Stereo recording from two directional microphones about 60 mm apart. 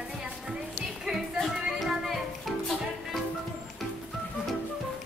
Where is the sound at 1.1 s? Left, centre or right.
Centre.